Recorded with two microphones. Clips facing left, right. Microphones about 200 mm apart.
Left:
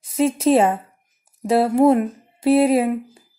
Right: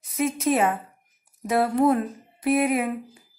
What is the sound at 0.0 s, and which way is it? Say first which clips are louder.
A woman's voice: left 6 dB; 30° left (ahead or behind).